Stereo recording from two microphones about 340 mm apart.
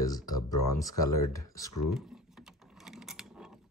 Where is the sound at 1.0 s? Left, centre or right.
Left.